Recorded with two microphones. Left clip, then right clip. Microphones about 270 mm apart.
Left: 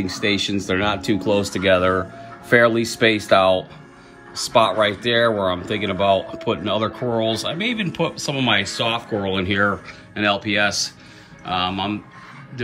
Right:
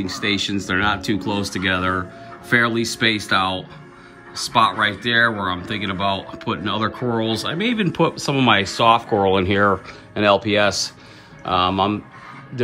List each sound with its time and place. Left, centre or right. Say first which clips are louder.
0.0 s speech: left 1 dB; centre
0.7 s speech: right 3 dB; right
1.3 s speech: left 6 dB; right
7.5 s speech: right 2 dB; centre